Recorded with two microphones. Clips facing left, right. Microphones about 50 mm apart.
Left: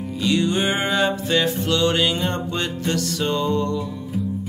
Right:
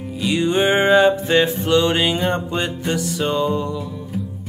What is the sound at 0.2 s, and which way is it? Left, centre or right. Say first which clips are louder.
Music: right 3 dB; centre.